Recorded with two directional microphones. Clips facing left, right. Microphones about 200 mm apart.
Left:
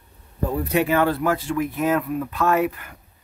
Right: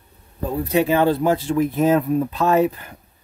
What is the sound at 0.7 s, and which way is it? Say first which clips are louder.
Speech: right 3 dB; 25° right (ahead or behind).